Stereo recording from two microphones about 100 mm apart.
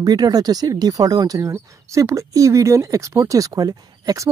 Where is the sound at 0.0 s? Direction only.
40° right (ahead or behind).